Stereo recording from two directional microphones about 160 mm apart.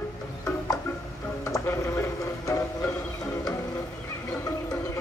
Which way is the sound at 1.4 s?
15° left (ahead or behind).